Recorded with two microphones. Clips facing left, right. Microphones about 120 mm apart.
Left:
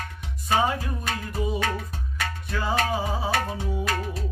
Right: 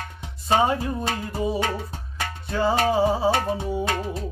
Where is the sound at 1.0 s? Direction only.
30° right (ahead or behind).